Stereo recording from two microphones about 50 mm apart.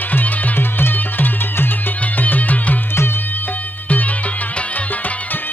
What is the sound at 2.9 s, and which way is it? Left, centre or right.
Music, left.